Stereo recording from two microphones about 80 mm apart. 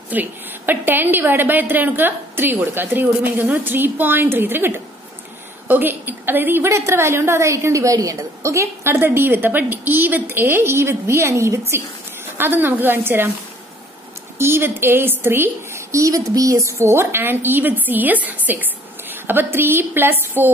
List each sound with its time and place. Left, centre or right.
0.1 s a woman's voice: right
12.4 s a woman's voice: right
14.4 s a woman's voice: right